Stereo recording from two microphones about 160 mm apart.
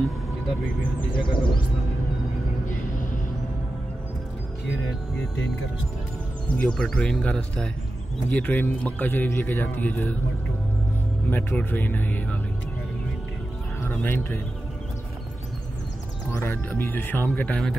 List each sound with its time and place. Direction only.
1.1 s speech: 30° left (ahead or behind)
6.5 s speech: 5° left (ahead or behind)
11.2 s speech: 10° left (ahead or behind)
13.8 s speech: 10° left (ahead or behind)
16.3 s speech: 15° left (ahead or behind)